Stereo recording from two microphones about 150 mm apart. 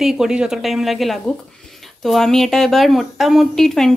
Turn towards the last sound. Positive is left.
turn(degrees=0)  # may be behind; listen again after turning